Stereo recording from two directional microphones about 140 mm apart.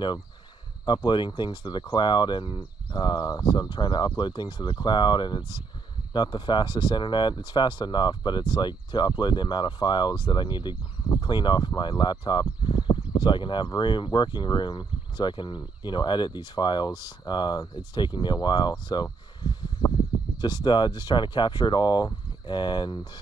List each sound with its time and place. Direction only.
0.8 s speech: 35° left (ahead or behind)